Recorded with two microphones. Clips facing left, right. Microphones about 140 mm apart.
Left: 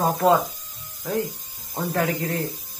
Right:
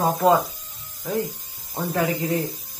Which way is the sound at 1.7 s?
5° right (ahead or behind).